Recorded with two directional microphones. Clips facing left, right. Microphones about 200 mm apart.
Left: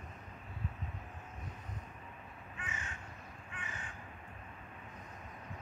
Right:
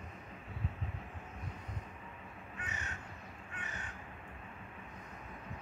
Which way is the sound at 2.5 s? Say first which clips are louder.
Even; 40° right (ahead or behind).